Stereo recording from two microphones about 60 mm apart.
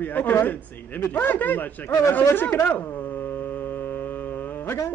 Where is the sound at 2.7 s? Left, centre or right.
Left.